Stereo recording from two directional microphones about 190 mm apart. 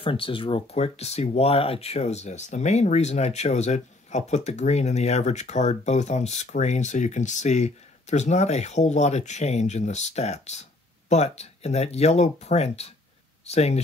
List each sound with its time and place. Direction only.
0.0 s speech: 30° left (ahead or behind)